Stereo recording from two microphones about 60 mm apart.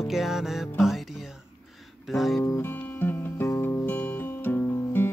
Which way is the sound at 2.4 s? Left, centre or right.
Left.